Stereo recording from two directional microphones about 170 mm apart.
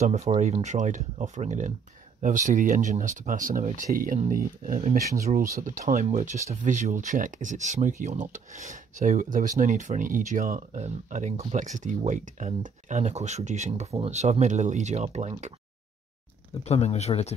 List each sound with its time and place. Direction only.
0.0 s speech: 40° right (ahead or behind)
6.0 s speech: 40° right (ahead or behind)
16.6 s speech: 40° left (ahead or behind)